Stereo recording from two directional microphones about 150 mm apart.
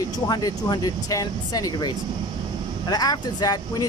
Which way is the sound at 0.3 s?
25° left (ahead or behind).